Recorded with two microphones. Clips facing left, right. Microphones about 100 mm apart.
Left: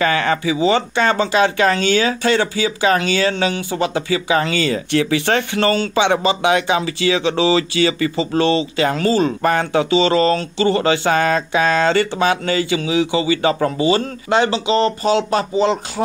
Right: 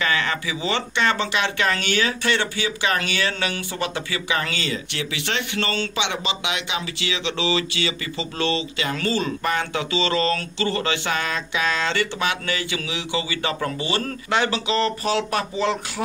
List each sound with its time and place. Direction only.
0.0 s speech: 35° left (ahead or behind)